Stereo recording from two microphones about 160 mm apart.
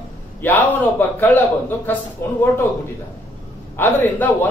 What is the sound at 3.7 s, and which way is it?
Speech, 10° left (ahead or behind).